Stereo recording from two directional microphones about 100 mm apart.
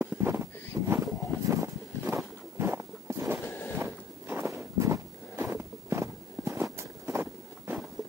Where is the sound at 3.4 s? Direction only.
20° left (ahead or behind).